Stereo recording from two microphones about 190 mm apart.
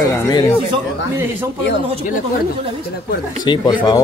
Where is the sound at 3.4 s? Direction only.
25° left (ahead or behind).